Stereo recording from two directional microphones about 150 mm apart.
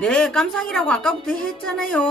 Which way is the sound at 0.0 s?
5° left (ahead or behind).